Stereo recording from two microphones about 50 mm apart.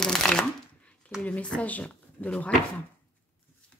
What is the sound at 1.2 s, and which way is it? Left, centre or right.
Speech, left.